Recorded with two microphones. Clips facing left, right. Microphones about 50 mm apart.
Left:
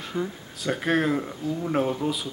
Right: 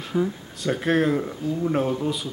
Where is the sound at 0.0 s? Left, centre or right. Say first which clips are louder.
Right 5 dB; centre.